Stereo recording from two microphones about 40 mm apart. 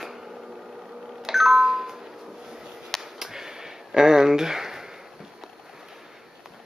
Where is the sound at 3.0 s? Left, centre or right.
Centre.